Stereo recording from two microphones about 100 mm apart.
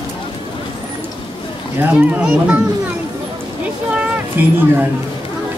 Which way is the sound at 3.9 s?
15° right (ahead or behind).